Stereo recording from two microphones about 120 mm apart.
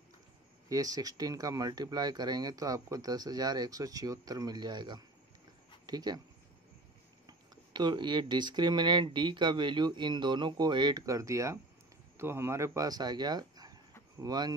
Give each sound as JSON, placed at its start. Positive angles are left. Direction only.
{"t": 0.7, "sound": "speech", "side_deg": -30}
{"t": 7.2, "sound": "speech", "side_deg": -40}